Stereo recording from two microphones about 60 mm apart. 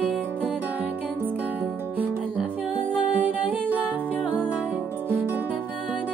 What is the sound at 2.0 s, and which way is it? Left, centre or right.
Music, right.